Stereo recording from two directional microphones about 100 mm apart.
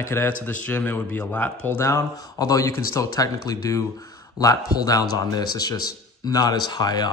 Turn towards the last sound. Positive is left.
turn(degrees=45)  # may be behind; listen again after turning